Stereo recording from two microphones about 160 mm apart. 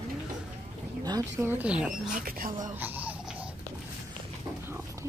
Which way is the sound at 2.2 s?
60° right (ahead or behind).